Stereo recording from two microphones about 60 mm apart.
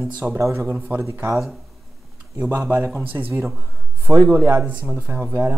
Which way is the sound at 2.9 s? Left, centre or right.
Right.